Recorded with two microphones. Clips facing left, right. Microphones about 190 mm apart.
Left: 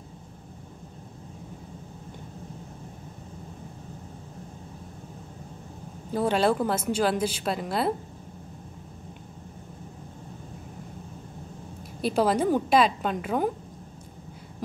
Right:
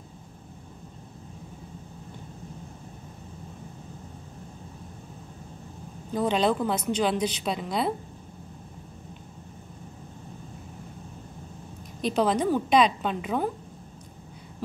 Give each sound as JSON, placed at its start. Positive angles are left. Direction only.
{"t": 6.1, "sound": "a woman's voice", "side_deg": 5}
{"t": 12.0, "sound": "a woman's voice", "side_deg": 5}